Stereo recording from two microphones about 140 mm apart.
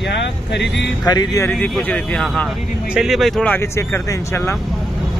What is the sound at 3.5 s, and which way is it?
Speech, 20° left (ahead or behind).